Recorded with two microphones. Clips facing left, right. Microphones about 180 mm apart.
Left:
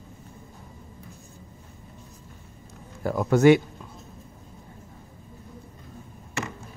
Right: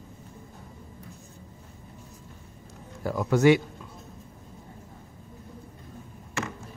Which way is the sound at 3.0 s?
50° left (ahead or behind).